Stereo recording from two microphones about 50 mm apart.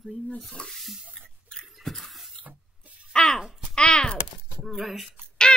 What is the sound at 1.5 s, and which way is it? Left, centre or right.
Drip, centre.